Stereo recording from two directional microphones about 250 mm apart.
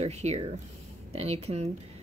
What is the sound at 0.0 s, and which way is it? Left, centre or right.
Speech, right.